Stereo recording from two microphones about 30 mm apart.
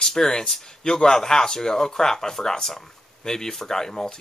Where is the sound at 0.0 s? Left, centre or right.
Left.